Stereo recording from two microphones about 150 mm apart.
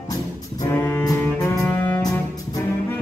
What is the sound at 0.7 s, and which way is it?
Music, 15° left (ahead or behind).